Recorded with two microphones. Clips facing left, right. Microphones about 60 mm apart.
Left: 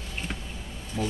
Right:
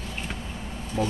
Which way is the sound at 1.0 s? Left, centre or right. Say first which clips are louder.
Right 3 dB; centre.